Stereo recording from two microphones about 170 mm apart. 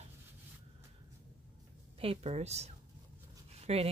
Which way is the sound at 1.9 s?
35° right (ahead or behind).